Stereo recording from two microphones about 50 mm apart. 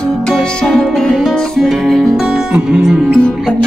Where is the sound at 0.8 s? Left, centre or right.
Centre.